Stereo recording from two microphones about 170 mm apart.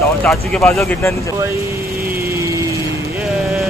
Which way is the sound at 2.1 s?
15° right (ahead or behind).